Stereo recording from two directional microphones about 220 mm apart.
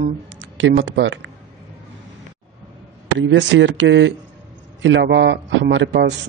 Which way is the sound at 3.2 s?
55° right (ahead or behind).